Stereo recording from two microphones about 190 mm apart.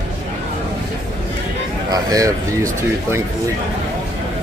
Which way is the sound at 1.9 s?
20° right (ahead or behind).